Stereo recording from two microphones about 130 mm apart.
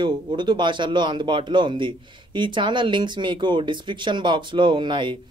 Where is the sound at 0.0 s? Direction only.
35° right (ahead or behind).